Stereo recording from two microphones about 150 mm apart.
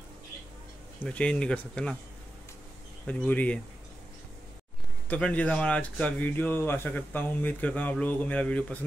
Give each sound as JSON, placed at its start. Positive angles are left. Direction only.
{"t": 1.0, "sound": "speech", "side_deg": 5}
{"t": 3.1, "sound": "speech", "side_deg": 10}
{"t": 5.0, "sound": "speech", "side_deg": 10}